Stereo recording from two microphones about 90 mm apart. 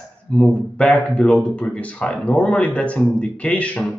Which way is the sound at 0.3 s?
10° left (ahead or behind).